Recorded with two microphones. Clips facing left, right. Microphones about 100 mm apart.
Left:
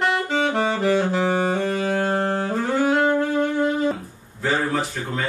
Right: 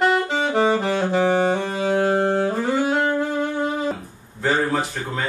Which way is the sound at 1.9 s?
10° right (ahead or behind).